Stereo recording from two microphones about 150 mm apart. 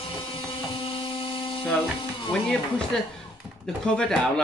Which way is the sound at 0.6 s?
35° left (ahead or behind).